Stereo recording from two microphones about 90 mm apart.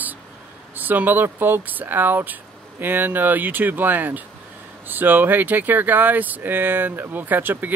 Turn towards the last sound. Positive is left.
turn(degrees=-20)  # may be behind; listen again after turning